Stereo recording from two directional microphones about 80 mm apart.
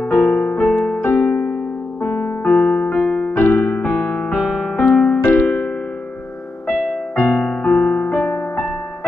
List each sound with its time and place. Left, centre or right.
0.2 s music: centre
1.0 s music: left
2.0 s electric piano: left
3.3 s electric piano: left
4.5 s music: centre
5.3 s keyboard: centre
7.2 s music: centre